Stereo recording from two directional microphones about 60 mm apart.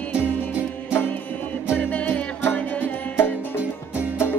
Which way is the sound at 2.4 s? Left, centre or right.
Left.